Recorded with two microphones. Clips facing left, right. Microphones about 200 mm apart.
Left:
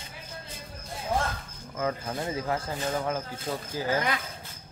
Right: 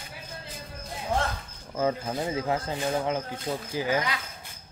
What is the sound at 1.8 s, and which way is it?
Speech, 20° right (ahead or behind).